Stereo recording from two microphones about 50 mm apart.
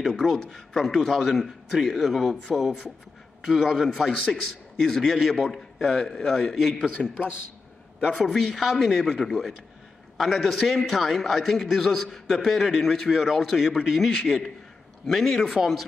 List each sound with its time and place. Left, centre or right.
0.2 s a man's voice: centre
3.4 s a man's voice: centre
4.3 s a man's voice: centre
6.9 s a man's voice: left
8.1 s a man's voice: centre